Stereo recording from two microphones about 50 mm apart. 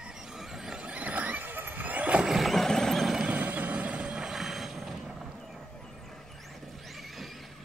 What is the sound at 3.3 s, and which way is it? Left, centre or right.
Vehicle, right.